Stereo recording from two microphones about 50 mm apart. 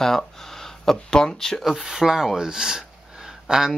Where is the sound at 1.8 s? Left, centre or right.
Centre.